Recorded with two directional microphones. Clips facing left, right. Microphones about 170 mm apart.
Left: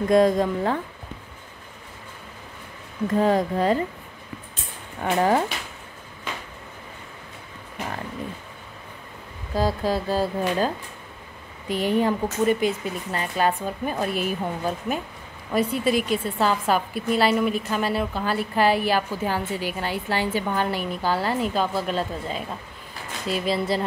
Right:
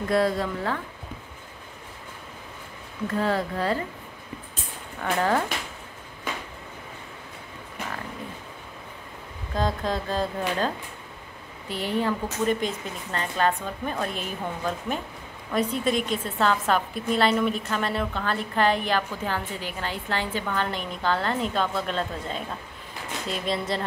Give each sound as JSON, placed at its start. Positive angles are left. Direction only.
{"t": 0.1, "sound": "speech", "side_deg": 20}
{"t": 3.1, "sound": "a woman's voice", "side_deg": 15}
{"t": 5.0, "sound": "a woman's voice", "side_deg": 15}
{"t": 9.6, "sound": "a woman's voice", "side_deg": 5}
{"t": 11.7, "sound": "a woman's voice", "side_deg": 15}